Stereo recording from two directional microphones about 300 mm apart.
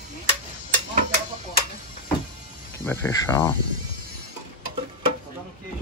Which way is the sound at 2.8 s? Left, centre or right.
Centre.